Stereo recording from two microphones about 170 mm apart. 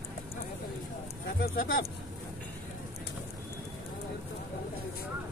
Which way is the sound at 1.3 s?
65° left (ahead or behind).